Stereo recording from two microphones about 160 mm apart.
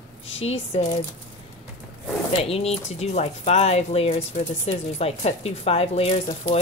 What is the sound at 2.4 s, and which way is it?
Speech, 40° left (ahead or behind).